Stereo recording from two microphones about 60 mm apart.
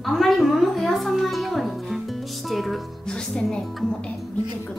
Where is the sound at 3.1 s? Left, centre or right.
Centre.